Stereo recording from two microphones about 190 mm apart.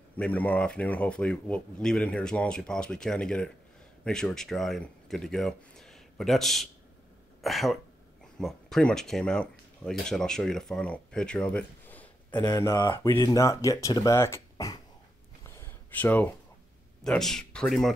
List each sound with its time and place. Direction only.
0.2 s speech: 10° left (ahead or behind)
15.4 s a sound: 15° left (ahead or behind)
17.0 s speech: centre (ahead or behind)